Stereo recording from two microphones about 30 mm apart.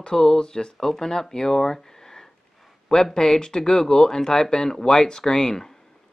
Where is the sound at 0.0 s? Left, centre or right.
Centre.